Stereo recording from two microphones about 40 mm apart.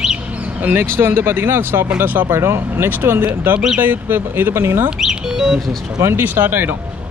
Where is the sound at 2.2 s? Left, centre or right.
Right.